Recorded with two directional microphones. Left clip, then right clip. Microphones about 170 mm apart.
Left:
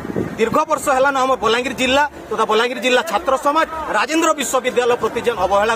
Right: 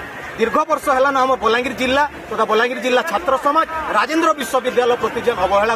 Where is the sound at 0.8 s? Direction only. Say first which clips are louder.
Right 1 dB; 30° left (ahead or behind).